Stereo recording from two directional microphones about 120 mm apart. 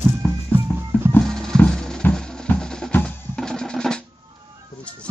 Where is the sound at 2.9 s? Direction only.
5° left (ahead or behind).